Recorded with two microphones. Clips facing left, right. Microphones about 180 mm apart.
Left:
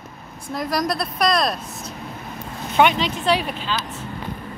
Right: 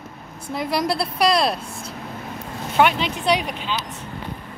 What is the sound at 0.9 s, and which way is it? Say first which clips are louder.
Speech: right 3 dB; 30° right (ahead or behind).